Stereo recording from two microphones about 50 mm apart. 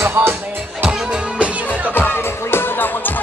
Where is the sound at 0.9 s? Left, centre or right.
Centre.